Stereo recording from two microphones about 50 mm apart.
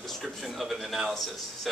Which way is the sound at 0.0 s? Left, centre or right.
Centre.